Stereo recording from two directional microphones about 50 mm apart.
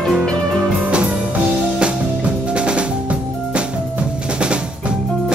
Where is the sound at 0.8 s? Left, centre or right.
Right.